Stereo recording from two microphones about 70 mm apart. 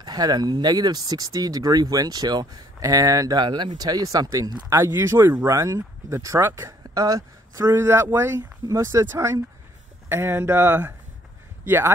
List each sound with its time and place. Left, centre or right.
0.0 s speech: right
2.8 s speech: right
3.3 s speech: right
4.6 s speech: right
6.9 s speech: right
7.7 s speech: right